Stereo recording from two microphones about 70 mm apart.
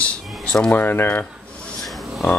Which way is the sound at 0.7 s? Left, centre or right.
Left.